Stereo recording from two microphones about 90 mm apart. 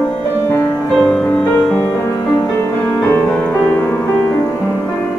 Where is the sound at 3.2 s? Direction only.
15° left (ahead or behind).